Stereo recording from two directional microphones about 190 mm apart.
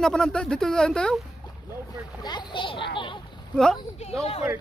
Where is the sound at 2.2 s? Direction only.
25° left (ahead or behind).